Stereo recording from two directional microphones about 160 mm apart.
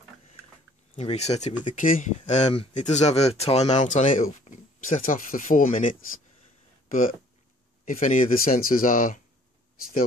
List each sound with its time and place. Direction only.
0.9 s speech: 45° left (ahead or behind)
1.8 s speech: 55° left (ahead or behind)